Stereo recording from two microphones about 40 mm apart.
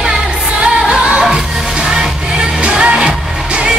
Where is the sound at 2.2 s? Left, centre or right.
Right.